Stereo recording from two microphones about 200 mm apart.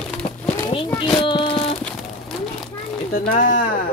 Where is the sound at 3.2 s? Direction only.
40° left (ahead or behind).